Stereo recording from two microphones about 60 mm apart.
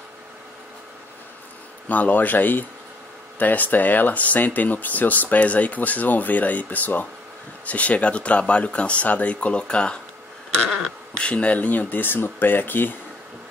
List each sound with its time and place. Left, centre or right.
1.9 s speech: left
11.1 s speech: centre